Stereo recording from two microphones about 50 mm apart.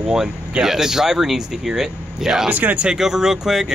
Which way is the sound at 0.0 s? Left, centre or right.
Centre.